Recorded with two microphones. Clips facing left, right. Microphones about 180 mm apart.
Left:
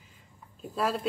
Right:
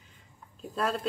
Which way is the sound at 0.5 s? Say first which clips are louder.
Left 1 dB; centre (ahead or behind).